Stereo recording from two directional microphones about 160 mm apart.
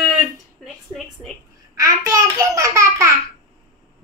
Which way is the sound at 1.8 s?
20° right (ahead or behind).